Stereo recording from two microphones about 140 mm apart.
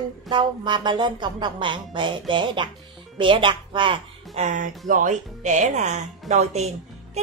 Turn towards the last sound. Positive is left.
turn(degrees=-50)  # may be behind; listen again after turning